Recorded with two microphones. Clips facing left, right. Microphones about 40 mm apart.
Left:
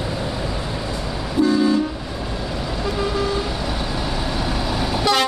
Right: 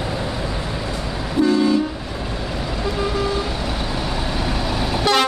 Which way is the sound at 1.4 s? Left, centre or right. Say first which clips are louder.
Even; centre.